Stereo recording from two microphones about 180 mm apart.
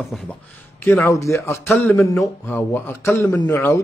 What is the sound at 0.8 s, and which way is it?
Speech, 10° left (ahead or behind).